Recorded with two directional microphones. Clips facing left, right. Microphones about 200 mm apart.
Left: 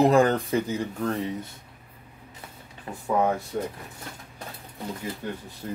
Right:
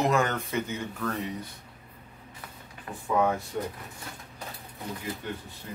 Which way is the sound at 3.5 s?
40° left (ahead or behind).